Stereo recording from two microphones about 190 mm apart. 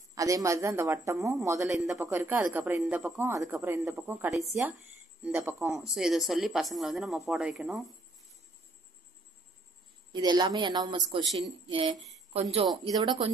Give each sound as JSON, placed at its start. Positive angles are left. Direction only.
{"t": 0.1, "sound": "speech", "side_deg": -15}
{"t": 5.8, "sound": "speech", "side_deg": 0}
{"t": 10.1, "sound": "speech", "side_deg": -20}
{"t": 11.2, "sound": "speech", "side_deg": 0}
{"t": 11.6, "sound": "speech", "side_deg": -25}